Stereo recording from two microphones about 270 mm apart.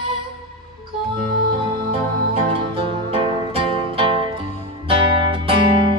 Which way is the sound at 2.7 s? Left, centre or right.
Centre.